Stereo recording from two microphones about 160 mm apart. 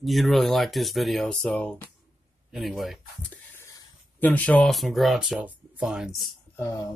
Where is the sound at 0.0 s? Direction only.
Centre (ahead or behind).